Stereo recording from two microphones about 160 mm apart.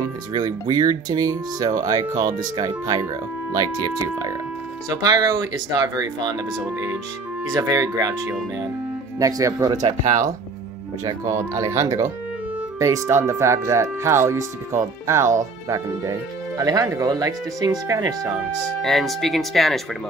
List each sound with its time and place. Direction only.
0.3 s speech: 25° right (ahead or behind)
7.4 s speech: 20° right (ahead or behind)
9.8 s speech: 50° right (ahead or behind)
11.1 s speech: 20° right (ahead or behind)
18.8 s speech: centre (ahead or behind)